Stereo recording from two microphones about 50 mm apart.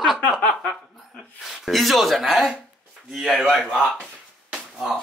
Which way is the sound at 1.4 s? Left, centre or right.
Centre.